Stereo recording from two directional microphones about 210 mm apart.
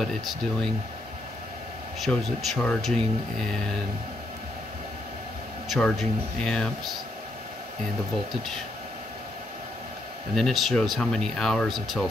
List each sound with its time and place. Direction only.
0.0 s speech: centre (ahead or behind)
2.0 s speech: centre (ahead or behind)
5.7 s speech: centre (ahead or behind)
10.3 s speech: centre (ahead or behind)